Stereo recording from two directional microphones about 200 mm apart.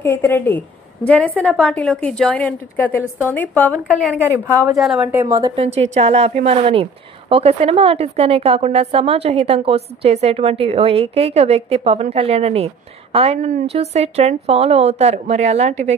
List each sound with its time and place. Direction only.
0.0 s a woman's voice: 10° left (ahead or behind)
3.8 s a woman's voice: 5° right (ahead or behind)
5.2 s a woman's voice: 15° right (ahead or behind)
5.6 s a woman's voice: 30° right (ahead or behind)